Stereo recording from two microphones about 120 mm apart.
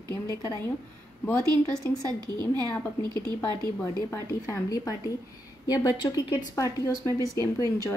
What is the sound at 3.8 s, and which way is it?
Speech, 25° left (ahead or behind).